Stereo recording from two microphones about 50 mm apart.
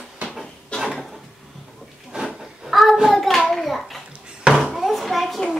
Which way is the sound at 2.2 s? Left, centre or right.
Centre.